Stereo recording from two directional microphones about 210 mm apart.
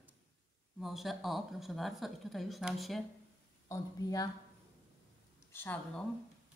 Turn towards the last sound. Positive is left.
turn(degrees=10)  # may be behind; listen again after turning